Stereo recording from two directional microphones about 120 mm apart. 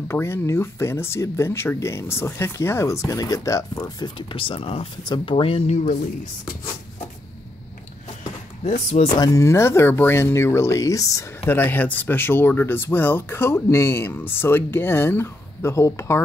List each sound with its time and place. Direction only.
0.1 s speech: 20° left (ahead or behind)
4.0 s speech: 45° left (ahead or behind)
5.0 s speech: 35° left (ahead or behind)
5.3 s speech: 50° left (ahead or behind)
8.2 s a sound: 80° left; by 9.2 s 60° left (ahead or behind)
9.2 s speech: 25° left (ahead or behind)
11.4 s speech: 15° left (ahead or behind)